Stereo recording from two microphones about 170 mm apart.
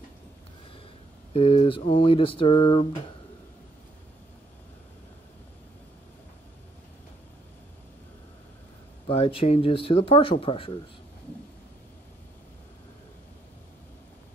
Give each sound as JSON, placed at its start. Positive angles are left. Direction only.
{"t": 1.3, "sound": "speech", "side_deg": 35}
{"t": 9.0, "sound": "speech", "side_deg": 35}